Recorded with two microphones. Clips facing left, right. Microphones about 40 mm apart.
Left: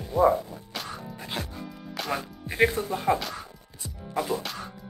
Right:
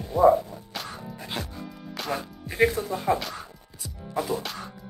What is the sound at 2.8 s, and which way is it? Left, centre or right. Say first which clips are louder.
Speech: even; centre.